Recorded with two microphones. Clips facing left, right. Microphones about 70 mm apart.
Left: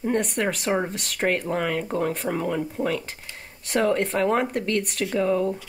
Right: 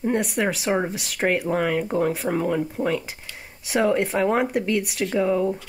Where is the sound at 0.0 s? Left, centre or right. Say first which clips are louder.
Right 1 dB; centre.